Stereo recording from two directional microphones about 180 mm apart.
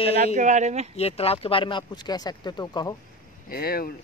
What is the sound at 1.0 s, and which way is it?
Speech, 35° left (ahead or behind).